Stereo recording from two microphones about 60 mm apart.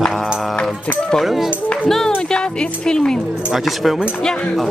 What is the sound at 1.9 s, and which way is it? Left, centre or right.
Speech, centre.